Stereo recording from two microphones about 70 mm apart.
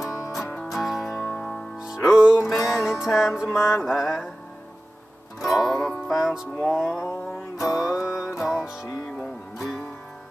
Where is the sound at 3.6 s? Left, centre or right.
Left.